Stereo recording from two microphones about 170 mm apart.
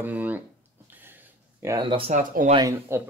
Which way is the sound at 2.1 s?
50° right (ahead or behind).